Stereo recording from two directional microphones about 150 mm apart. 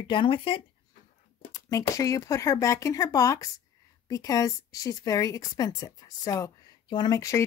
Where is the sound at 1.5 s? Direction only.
20° left (ahead or behind).